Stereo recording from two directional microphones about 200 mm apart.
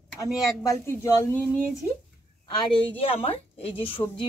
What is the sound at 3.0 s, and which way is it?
A woman's voice, 30° left (ahead or behind).